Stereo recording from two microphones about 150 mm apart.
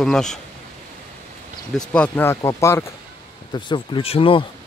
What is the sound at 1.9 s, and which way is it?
Speech, 10° left (ahead or behind).